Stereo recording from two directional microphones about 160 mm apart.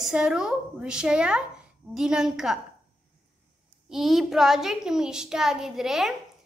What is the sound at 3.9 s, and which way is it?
A woman's voice, centre (ahead or behind).